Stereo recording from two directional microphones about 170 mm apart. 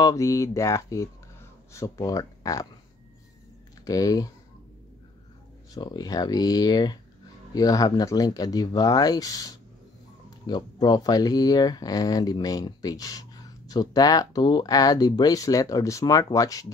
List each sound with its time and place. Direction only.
0.0 s speech: 20° left (ahead or behind)
3.8 s speech: 20° left (ahead or behind)
5.8 s speech: 25° left (ahead or behind)